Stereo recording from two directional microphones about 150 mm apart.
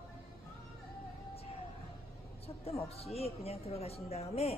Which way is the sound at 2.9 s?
45° left (ahead or behind).